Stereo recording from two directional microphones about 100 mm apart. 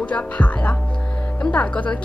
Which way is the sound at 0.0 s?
10° left (ahead or behind).